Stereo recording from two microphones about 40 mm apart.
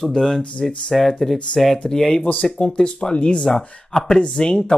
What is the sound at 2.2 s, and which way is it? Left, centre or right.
Speech, left.